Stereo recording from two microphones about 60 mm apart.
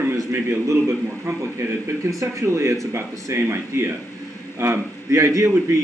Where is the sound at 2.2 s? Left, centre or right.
Right.